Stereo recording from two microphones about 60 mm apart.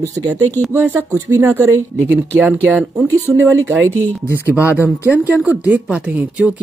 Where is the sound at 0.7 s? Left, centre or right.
Right.